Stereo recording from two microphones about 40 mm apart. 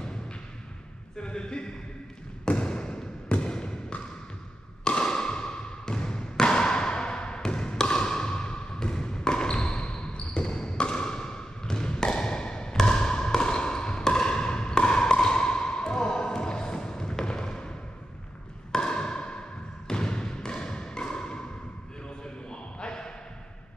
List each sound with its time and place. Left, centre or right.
1.2 s speech: left
2.4 s basketball bounce: left
4.8 s a sound: left
18.7 s ping: centre
19.9 s thump: left
22.2 s a sound: left